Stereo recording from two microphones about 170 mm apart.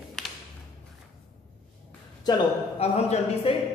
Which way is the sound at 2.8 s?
35° left (ahead or behind).